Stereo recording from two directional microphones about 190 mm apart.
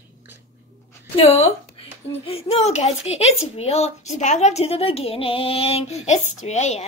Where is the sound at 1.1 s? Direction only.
35° left (ahead or behind).